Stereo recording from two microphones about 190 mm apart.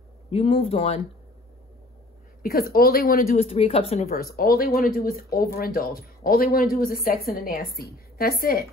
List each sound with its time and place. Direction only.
0.3 s speech: 30° left (ahead or behind)
2.7 s speech: 50° left (ahead or behind)
3.3 s speech: 30° left (ahead or behind)
4.1 s speech: 50° left (ahead or behind)